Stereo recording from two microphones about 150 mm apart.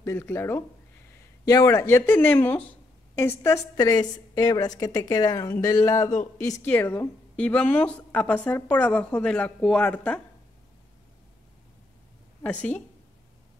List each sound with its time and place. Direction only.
0.0 s speech: 15° left (ahead or behind)
12.4 s speech: 10° left (ahead or behind)